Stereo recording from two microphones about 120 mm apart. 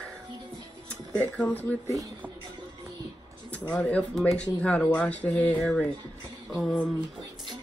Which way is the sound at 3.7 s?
10° left (ahead or behind).